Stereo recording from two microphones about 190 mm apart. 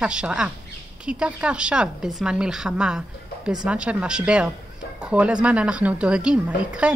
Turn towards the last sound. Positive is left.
turn(degrees=-5)  # may be behind; listen again after turning